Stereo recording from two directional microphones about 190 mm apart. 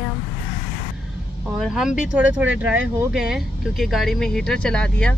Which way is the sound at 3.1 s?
5° right (ahead or behind).